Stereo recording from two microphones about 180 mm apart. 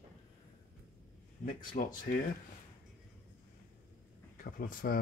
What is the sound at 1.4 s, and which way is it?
Speech, 50° left (ahead or behind).